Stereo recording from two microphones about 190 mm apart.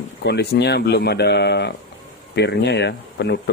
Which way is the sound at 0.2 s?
60° left (ahead or behind).